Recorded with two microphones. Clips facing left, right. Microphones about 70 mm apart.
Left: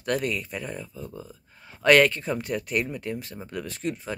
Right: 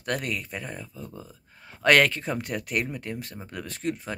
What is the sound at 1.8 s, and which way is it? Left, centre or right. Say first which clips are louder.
Speech: left 2 dB; right.